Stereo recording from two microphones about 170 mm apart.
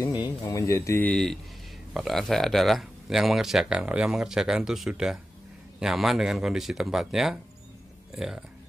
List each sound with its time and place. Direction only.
0.0 s speech: 25° left (ahead or behind); by 8.5 s centre (ahead or behind)